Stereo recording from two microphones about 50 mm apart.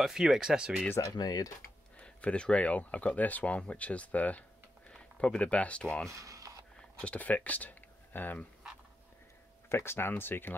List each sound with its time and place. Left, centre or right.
0.0 s speech: centre
1.0 s speech: left
2.0 s speech: left
6.0 s speech: right
6.8 s a sound: left
7.2 s speech: left
9.7 s speech: left